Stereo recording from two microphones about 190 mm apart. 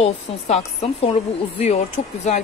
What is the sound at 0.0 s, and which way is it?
A woman's voice, 35° left (ahead or behind).